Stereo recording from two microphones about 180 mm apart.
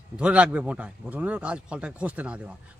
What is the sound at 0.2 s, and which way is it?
Speech, 5° right (ahead or behind).